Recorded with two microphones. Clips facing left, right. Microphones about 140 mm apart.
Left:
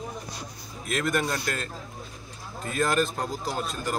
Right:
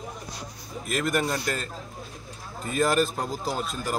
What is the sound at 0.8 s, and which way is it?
Speech, 5° right (ahead or behind).